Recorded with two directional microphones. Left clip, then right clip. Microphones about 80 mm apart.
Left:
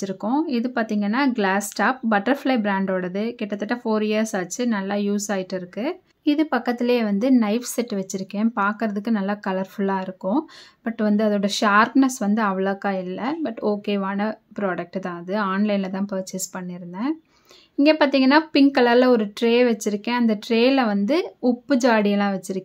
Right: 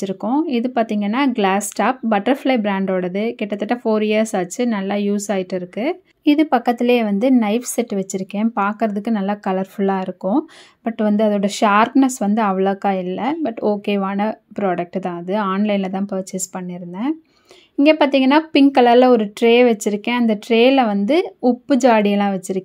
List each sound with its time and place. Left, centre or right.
0.0 s speech: right
6.2 s a woman's voice: right